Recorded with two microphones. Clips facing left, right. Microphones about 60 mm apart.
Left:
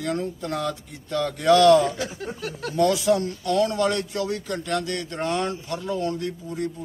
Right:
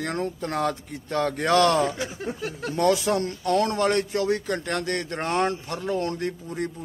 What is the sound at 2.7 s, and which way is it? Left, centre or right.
A man's voice, right.